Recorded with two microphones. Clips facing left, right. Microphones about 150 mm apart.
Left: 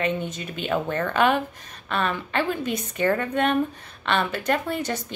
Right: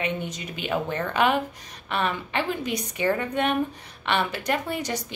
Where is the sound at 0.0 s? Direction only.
15° right (ahead or behind).